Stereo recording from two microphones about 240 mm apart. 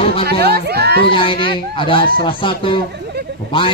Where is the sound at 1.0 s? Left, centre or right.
Left.